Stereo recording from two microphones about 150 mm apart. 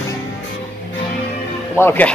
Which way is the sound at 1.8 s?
15° left (ahead or behind).